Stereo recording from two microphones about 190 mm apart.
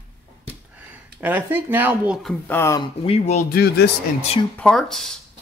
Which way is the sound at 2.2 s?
10° left (ahead or behind).